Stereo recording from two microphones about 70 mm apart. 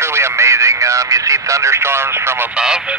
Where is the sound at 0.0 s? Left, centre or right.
Right.